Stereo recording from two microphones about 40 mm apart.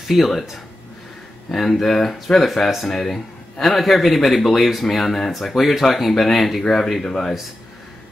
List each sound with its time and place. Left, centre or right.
0.1 s a man's voice: centre
1.5 s a man's voice: centre